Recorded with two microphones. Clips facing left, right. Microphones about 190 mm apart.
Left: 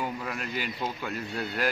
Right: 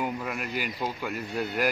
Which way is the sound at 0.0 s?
10° right (ahead or behind).